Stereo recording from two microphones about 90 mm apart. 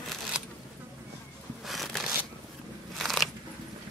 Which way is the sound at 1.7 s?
Centre (ahead or behind).